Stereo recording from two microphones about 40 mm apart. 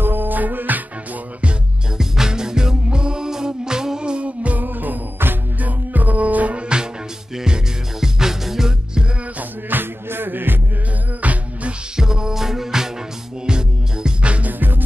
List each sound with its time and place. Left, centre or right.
0.0 s music: right
2.0 s music: centre; by 4.6 s right
4.6 s music: right
7.3 s music: centre
9.4 s music: right
11.2 s music: right
12.0 s music: centre
14.5 s music: right